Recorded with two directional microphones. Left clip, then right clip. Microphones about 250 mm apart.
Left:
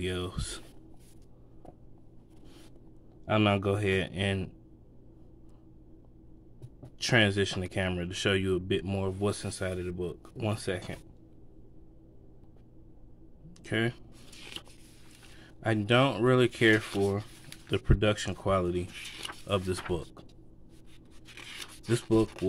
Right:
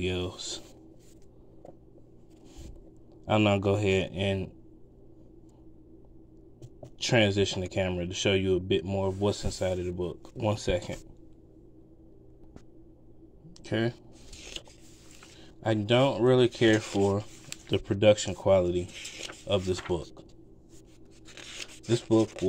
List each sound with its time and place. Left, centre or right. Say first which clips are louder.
0.0 s speech: right 3 dB; centre
3.3 s speech: right 2 dB; centre
7.0 s speech: right 1 dB; centre
13.5 s a sound: right 1 dB; centre
15.6 s speech: right 1 dB; centre
17.1 s speech: right 4 dB; centre
21.5 s a sound: right 2 dB; centre
22.1 s speech: right 2 dB; centre